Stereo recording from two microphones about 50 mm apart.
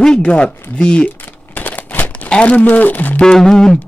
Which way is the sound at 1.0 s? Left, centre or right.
Left.